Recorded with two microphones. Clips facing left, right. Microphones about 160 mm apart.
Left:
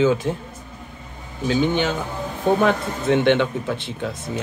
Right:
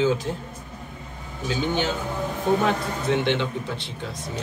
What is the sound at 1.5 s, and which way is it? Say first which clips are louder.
Speech: left 5 dB; 60° left (ahead or behind).